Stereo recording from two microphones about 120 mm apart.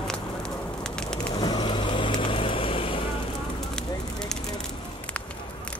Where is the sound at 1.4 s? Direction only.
40° left (ahead or behind).